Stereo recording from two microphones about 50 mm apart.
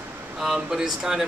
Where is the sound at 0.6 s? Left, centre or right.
Centre.